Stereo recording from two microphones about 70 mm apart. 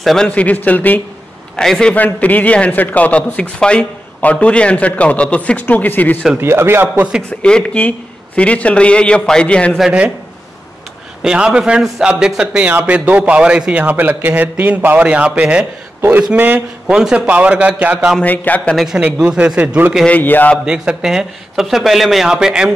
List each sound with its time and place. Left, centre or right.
0.0 s speech: centre
0.3 s a man's voice: left
1.6 s a man's voice: centre
2.0 s a man's voice: left
6.3 s a man's voice: right
7.2 s a man's voice: centre
11.2 s a man's voice: centre
16.0 s a man's voice: right
16.9 s a man's voice: centre
18.2 s a man's voice: left
18.9 s speech: centre
20.1 s a man's voice: left
20.6 s speech: centre